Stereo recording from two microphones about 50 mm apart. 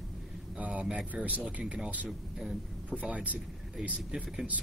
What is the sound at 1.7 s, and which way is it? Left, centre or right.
Speech, right.